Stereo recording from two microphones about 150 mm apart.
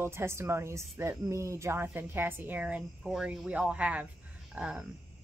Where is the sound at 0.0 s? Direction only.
15° right (ahead or behind).